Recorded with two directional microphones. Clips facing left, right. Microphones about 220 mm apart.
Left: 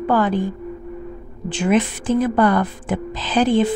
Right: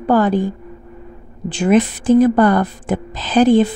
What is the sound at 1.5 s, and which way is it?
A woman's voice, 40° right (ahead or behind).